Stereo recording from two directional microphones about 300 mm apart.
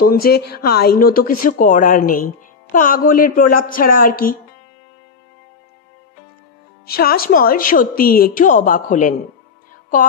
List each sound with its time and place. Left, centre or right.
0.0 s speech: left
6.9 s speech: left